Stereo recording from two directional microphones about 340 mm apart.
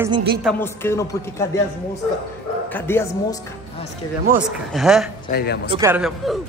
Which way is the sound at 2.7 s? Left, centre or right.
Centre.